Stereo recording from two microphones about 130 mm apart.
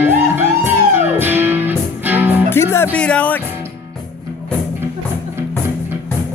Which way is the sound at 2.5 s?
20° left (ahead or behind).